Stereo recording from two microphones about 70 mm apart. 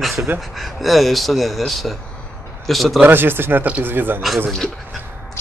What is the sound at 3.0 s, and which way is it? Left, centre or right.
Speech, right.